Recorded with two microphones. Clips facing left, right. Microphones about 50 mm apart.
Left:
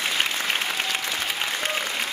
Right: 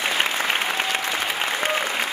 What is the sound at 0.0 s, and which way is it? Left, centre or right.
Applause, centre.